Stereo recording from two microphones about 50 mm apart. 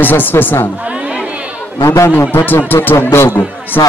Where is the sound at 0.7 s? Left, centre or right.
Right.